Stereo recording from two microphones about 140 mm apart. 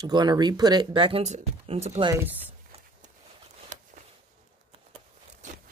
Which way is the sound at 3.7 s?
60° right (ahead or behind).